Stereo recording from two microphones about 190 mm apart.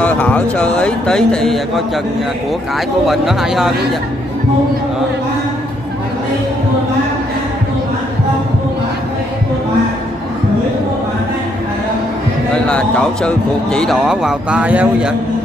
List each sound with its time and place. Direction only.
0.0 s speech: 5° left (ahead or behind)
3.1 s speech: centre (ahead or behind)
12.6 s speech: 5° left (ahead or behind)